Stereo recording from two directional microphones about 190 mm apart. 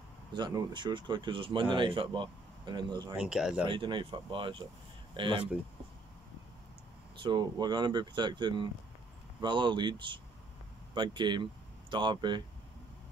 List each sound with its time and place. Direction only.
0.3 s speech: 25° right (ahead or behind)
3.2 s speech: 5° right (ahead or behind)
3.6 s speech: 25° right (ahead or behind)
7.2 s speech: 25° right (ahead or behind)